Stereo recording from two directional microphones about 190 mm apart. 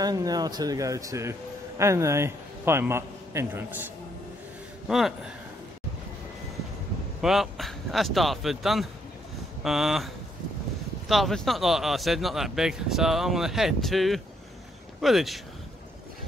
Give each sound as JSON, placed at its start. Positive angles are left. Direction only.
{"t": 0.0, "sound": "a man's voice", "side_deg": -20}
{"t": 4.8, "sound": "speech", "side_deg": 0}
{"t": 7.2, "sound": "speech", "side_deg": 0}